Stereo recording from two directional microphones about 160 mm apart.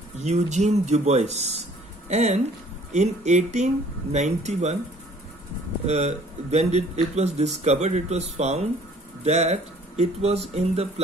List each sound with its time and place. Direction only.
0.2 s speech: 45° right (ahead or behind)
5.9 s speech: 45° right (ahead or behind)